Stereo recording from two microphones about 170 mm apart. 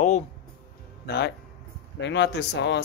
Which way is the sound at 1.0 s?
80° left.